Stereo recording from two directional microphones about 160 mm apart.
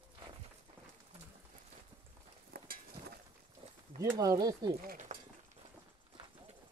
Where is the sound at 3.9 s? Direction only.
20° right (ahead or behind).